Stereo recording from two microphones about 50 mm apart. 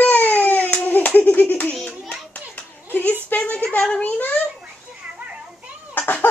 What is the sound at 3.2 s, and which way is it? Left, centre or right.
Speech, left.